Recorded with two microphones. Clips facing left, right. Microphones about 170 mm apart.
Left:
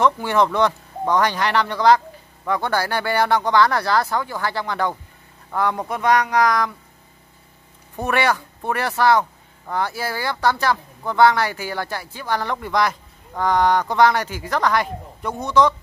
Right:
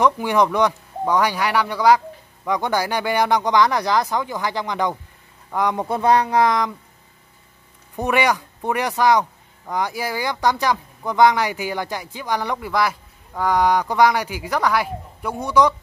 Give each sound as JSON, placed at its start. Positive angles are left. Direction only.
{"t": 0.0, "sound": "speech", "side_deg": -15}
{"t": 5.9, "sound": "speech", "side_deg": -30}
{"t": 7.9, "sound": "speech", "side_deg": -15}